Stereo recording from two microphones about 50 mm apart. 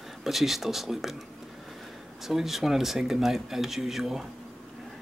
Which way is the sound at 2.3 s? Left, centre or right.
Centre.